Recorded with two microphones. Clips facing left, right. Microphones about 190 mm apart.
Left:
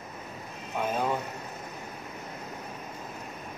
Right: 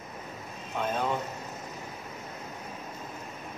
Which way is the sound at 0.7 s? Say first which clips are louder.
Left 1 dB; 10° left (ahead or behind).